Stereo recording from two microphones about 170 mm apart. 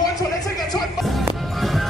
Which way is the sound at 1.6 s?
Centre (ahead or behind).